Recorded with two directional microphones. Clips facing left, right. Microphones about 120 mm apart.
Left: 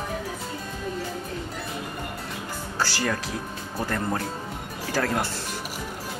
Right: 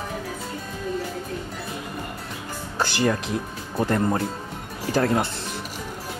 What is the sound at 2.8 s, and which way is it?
Music, 25° right (ahead or behind).